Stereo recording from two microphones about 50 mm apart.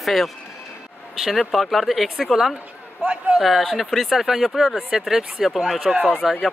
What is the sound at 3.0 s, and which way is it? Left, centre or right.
Speech, right.